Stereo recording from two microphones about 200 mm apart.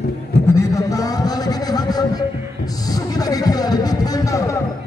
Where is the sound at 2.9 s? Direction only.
20° left (ahead or behind).